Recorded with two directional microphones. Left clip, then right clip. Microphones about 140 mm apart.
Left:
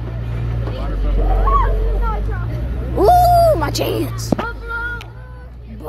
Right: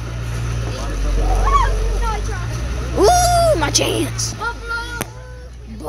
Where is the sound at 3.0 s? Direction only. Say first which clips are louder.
Left 3 dB; 40° right (ahead or behind).